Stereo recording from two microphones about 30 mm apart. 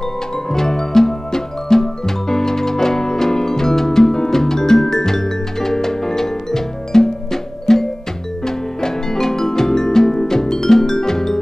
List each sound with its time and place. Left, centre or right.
0.5 s music: centre